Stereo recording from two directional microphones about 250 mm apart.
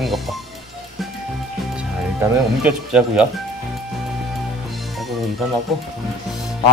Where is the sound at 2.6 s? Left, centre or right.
Centre.